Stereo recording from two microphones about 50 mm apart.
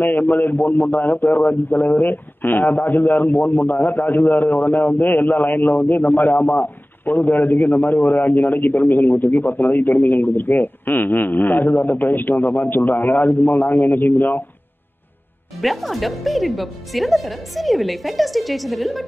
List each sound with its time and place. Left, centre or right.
0.0 s a man's voice: left
15.6 s speech: centre